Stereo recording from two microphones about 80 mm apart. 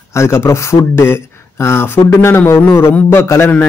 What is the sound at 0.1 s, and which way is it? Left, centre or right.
A man's voice, left.